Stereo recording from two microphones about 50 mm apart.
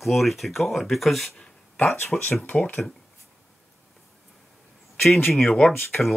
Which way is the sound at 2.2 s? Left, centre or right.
Left.